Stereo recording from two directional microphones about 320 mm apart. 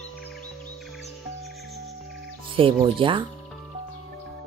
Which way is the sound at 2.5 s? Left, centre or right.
Centre.